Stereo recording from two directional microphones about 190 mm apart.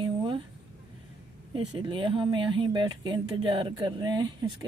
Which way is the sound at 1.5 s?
25° right (ahead or behind).